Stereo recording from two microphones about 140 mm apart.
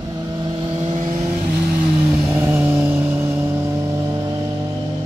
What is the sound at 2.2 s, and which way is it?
Vehicle, 15° right (ahead or behind).